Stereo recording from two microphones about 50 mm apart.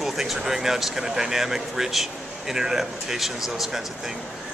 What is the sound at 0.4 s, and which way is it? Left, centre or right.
Speech, centre.